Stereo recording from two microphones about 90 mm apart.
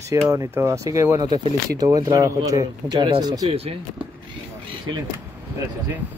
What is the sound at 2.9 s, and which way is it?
Speech, 55° right (ahead or behind).